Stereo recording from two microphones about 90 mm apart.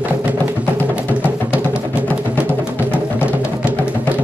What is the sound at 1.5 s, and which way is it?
Music, 15° right (ahead or behind).